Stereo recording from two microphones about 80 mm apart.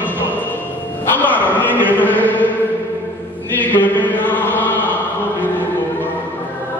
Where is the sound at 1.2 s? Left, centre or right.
Left.